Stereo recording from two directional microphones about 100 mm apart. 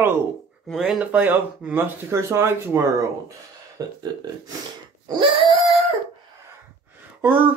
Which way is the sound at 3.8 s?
40° right (ahead or behind).